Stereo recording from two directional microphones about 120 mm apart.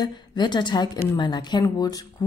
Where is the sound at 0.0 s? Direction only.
40° left (ahead or behind).